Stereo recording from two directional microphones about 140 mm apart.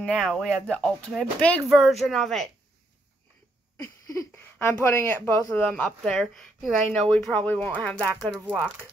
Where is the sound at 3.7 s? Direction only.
20° left (ahead or behind).